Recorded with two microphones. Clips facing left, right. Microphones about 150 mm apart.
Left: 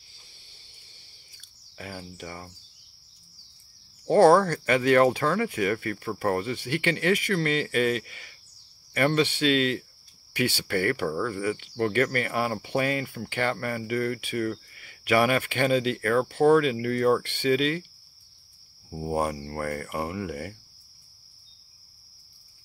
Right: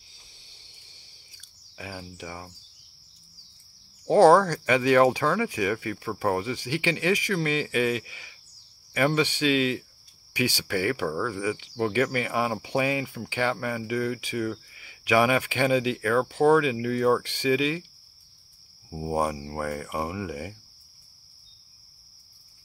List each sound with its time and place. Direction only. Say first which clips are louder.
1.8 s speech: even; 10° right (ahead or behind)
4.0 s a sound: right 1 dB; 10° right (ahead or behind)
4.4 s speech: even; 10° right (ahead or behind)
18.9 s speech: right 1 dB; 10° right (ahead or behind)